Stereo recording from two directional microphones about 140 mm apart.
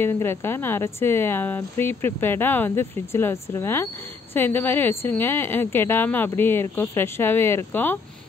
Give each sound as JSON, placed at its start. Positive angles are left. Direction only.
{"t": 0.0, "sound": "speech", "side_deg": 15}